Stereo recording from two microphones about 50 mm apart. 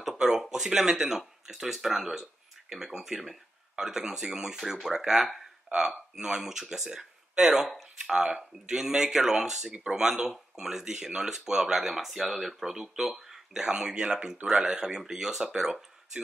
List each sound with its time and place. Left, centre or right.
0.0 s speech: centre
5.7 s speech: centre